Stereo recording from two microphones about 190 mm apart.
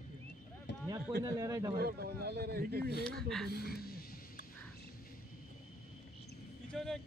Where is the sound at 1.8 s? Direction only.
55° right (ahead or behind).